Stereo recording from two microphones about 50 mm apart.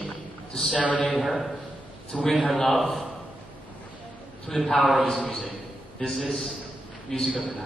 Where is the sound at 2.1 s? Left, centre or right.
Centre.